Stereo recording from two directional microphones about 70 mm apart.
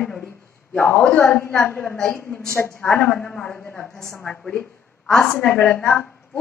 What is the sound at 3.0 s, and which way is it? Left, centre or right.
A woman's voice, centre.